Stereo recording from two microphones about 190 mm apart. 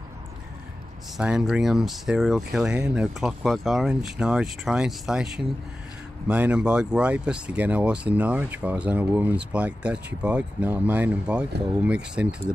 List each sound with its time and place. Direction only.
1.1 s speech: 5° right (ahead or behind)